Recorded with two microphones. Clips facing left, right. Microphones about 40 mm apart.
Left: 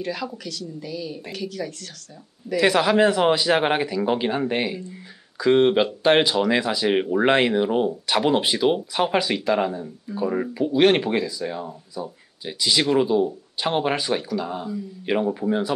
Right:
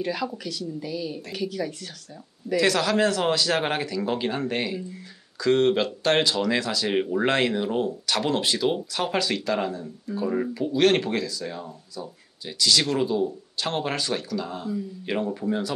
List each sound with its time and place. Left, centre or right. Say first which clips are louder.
0.0 s speech: right 1 dB; centre
2.6 s a man's voice: left 5 dB; left